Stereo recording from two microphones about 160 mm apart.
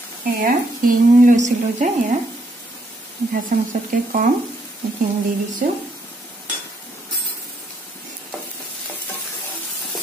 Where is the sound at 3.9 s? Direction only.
60° right (ahead or behind).